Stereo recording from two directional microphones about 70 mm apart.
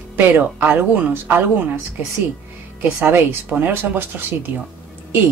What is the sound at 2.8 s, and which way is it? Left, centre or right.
Speech, right.